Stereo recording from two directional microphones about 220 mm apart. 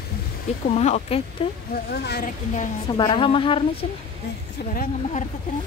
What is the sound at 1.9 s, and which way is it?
Speech, 45° left (ahead or behind).